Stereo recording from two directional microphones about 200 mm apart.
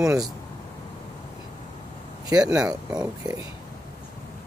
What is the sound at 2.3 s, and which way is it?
Speech, 5° right (ahead or behind).